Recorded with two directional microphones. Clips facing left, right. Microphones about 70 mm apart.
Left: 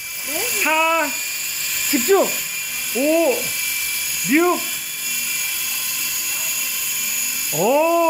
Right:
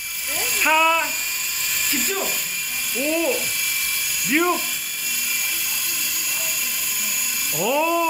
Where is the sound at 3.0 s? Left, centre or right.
Centre.